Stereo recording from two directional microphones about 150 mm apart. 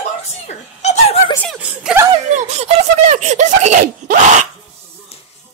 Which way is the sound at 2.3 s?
50° right (ahead or behind).